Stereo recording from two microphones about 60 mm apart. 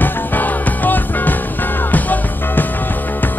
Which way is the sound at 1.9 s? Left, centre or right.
Left.